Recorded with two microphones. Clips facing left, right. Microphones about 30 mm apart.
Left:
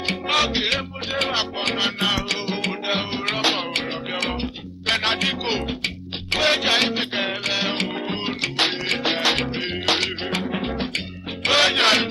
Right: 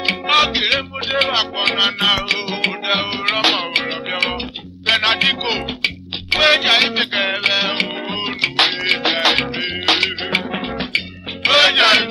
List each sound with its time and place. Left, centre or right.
0.0 s music: right
4.8 s music: right
7.6 s music: right
8.4 s music: right
11.4 s music: right